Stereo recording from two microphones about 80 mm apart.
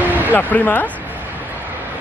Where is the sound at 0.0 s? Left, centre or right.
Right.